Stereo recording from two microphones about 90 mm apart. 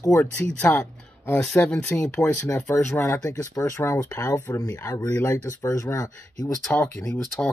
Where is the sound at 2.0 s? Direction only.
30° left (ahead or behind).